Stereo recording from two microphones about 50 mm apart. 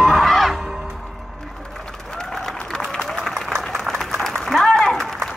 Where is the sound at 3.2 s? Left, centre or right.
Centre.